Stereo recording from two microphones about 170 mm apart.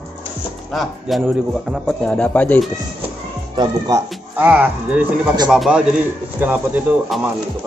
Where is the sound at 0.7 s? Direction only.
Centre (ahead or behind).